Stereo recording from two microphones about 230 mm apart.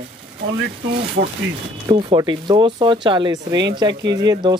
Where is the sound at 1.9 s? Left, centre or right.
Centre.